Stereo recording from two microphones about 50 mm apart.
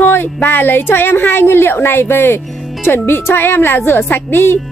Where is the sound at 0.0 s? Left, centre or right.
Left.